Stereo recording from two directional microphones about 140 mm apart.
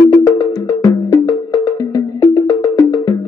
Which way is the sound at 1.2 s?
20° left (ahead or behind).